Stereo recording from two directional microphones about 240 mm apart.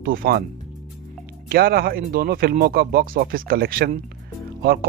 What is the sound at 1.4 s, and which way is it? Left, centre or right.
Speech, right.